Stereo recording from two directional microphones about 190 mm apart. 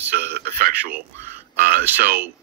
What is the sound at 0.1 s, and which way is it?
Speech, 60° right (ahead or behind).